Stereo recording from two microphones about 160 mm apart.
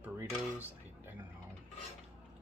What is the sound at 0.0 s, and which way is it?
Dishes, 10° right (ahead or behind).